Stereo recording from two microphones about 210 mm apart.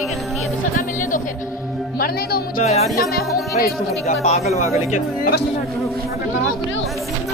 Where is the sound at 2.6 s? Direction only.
30° left (ahead or behind).